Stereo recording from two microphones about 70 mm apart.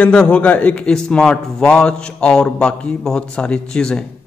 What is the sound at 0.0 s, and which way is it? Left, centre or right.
A man's voice, centre.